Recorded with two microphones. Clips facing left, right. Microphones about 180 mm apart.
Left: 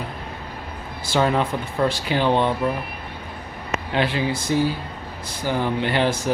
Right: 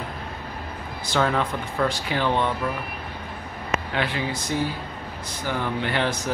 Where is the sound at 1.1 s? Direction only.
25° left (ahead or behind).